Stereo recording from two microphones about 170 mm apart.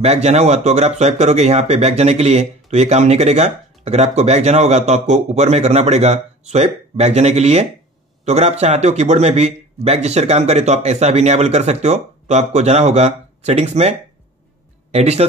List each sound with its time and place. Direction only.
0.0 s a man's voice: 40° right (ahead or behind)